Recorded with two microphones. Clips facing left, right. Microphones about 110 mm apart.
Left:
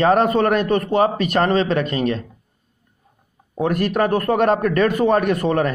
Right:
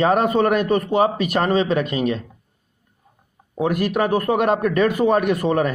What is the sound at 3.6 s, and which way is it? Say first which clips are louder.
Speech: left 1 dB; 10° right (ahead or behind).